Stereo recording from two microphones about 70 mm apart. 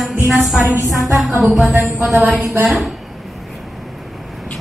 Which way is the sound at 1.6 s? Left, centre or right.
Right.